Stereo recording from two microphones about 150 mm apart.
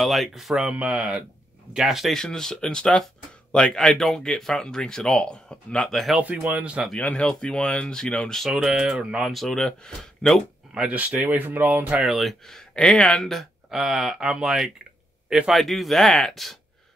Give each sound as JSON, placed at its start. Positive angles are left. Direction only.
{"t": 0.0, "sound": "speech", "side_deg": 0}
{"t": 6.9, "sound": "speech", "side_deg": 10}